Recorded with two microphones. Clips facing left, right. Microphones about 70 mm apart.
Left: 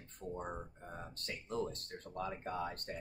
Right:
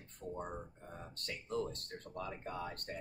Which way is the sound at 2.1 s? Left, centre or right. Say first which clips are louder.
Left 3 dB; left.